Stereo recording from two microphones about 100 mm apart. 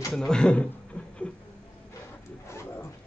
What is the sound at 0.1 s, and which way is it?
Speech, 10° left (ahead or behind).